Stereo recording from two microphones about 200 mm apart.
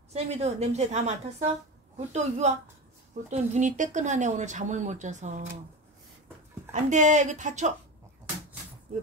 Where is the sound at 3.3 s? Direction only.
40° right (ahead or behind).